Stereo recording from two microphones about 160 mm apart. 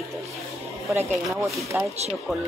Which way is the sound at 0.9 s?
15° right (ahead or behind).